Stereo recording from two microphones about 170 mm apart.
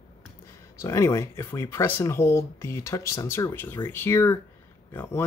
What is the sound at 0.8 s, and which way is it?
Speech, 15° left (ahead or behind).